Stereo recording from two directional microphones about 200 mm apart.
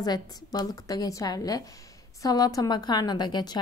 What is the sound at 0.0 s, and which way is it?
A woman's voice, 20° left (ahead or behind).